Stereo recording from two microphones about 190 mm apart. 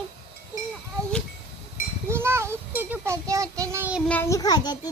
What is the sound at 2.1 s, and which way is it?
Child singing, 15° right (ahead or behind).